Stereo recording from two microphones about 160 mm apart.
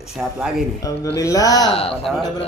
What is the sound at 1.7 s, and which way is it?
Speech, 40° left (ahead or behind).